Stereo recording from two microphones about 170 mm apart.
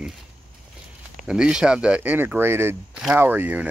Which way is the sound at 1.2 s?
5° right (ahead or behind).